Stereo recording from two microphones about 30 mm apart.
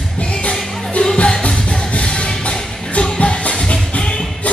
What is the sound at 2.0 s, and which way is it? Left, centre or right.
Music, left.